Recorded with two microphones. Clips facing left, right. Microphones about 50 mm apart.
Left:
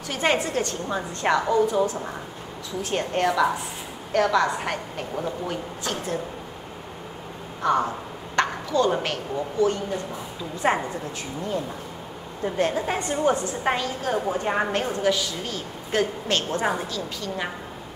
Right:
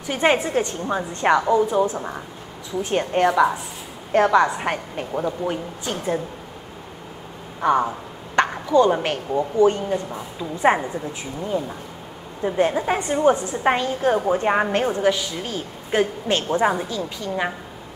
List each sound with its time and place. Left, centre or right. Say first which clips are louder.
0.0 s a woman's voice: right 4 dB; centre
7.6 s a woman's voice: right 3 dB; centre
9.3 s a woman's voice: right 6 dB; right
12.4 s a woman's voice: right 4 dB; centre